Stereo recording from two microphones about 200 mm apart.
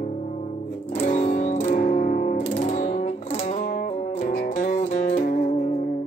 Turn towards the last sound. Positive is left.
turn(degrees=40)  # may be behind; listen again after turning